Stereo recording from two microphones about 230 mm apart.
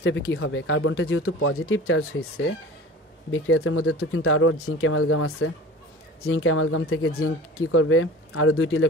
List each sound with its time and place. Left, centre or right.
0.0 s speech: left